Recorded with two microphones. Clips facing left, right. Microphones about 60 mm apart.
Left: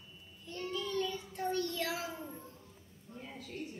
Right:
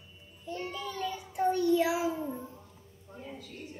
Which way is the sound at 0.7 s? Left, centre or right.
Centre.